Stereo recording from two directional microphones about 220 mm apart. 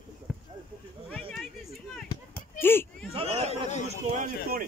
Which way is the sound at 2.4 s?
10° left (ahead or behind).